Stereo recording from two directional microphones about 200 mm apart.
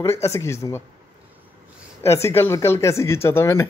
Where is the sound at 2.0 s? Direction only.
15° left (ahead or behind).